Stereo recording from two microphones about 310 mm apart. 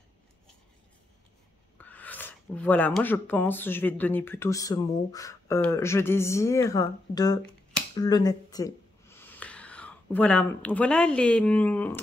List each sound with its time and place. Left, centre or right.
1.8 s speech: centre